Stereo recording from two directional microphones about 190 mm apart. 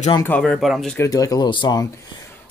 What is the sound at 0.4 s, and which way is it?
Speech, centre (ahead or behind).